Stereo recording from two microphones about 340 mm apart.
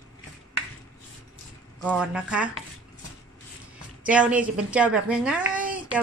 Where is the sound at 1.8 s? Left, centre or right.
Centre.